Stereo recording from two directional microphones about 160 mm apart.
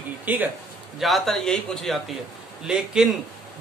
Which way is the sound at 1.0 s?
Centre (ahead or behind).